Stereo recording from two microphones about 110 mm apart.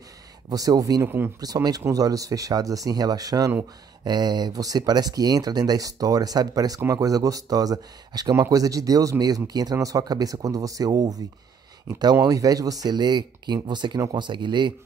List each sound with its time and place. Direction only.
0.5 s speech: 35° right (ahead or behind)
1.0 s speech: 20° right (ahead or behind)
1.4 s speech: 35° right (ahead or behind)